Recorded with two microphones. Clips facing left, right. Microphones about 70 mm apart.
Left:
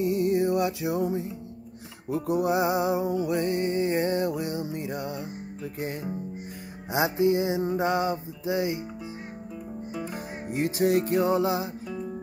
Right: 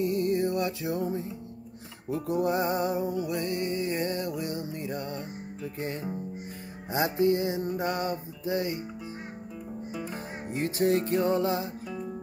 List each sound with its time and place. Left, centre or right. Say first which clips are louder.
0.0 s music: left 3 dB; centre
9.9 s music: left 3 dB; centre